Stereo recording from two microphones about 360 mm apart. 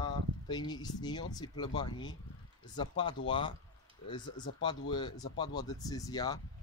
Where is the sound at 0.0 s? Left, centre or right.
Centre.